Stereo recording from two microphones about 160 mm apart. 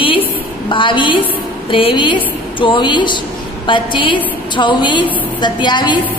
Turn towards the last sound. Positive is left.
turn(degrees=30)  # may be behind; listen again after turning